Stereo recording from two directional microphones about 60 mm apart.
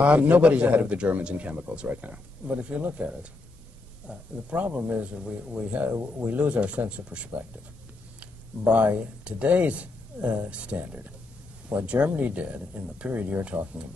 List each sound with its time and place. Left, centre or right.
0.0 s a man's voice: right
4.1 s a man's voice: right